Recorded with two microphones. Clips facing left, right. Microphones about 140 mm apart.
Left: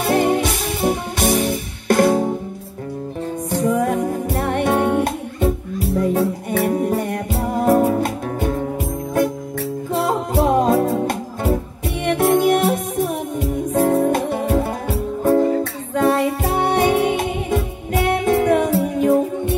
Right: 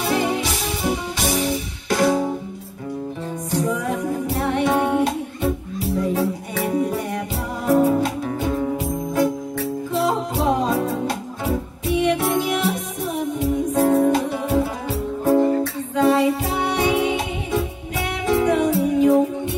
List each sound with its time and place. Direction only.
0.0 s music: 55° left (ahead or behind)
3.5 s music: 50° left (ahead or behind)
9.9 s music: 55° left (ahead or behind)